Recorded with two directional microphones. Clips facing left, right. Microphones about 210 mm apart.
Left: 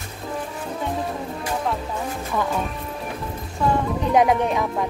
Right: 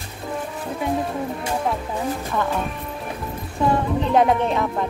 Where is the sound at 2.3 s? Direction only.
5° left (ahead or behind).